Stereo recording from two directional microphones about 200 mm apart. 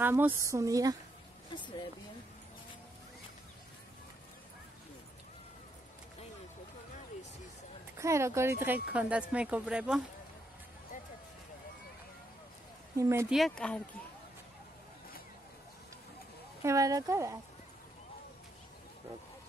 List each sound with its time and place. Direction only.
0.0 s speech: 10° right (ahead or behind)
1.5 s speech: 25° left (ahead or behind)
8.0 s speech: 15° right (ahead or behind)
12.9 s speech: 15° right (ahead or behind)
13.3 s speech: centre (ahead or behind)
16.6 s speech: 15° right (ahead or behind)